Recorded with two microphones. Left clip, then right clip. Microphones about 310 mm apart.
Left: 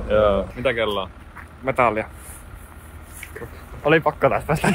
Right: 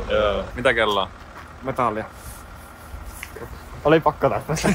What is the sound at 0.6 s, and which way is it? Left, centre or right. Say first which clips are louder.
Speech: right 3 dB; centre.